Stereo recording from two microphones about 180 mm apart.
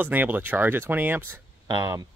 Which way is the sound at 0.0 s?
10° right (ahead or behind).